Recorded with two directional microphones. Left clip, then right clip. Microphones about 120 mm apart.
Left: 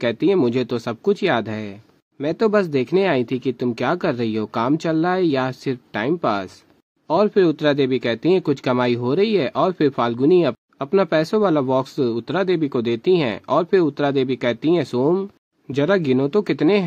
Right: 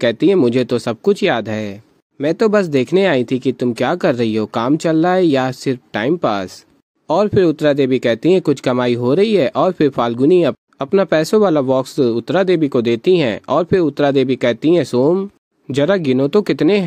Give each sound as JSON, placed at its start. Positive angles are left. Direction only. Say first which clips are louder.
{"t": 0.0, "sound": "speech", "louder": "right 5 dB", "side_deg": -30}